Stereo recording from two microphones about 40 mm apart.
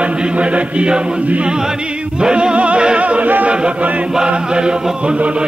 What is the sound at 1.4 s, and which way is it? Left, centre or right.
Choir, centre.